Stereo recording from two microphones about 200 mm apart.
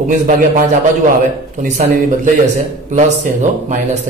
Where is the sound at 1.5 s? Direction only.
40° right (ahead or behind).